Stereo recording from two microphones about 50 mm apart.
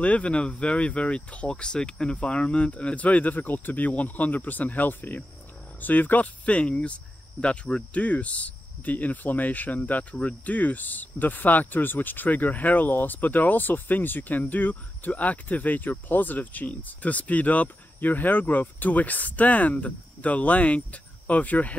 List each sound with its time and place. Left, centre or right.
0.0 s speech: left